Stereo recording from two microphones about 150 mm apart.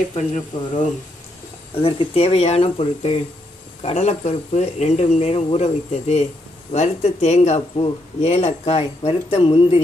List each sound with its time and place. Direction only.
0.1 s speech: 45° left (ahead or behind)